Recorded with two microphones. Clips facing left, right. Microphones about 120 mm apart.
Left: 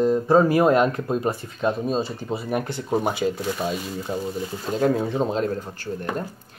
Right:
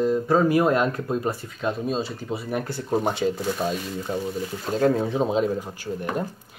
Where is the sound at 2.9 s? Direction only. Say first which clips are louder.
Even; 5° left (ahead or behind).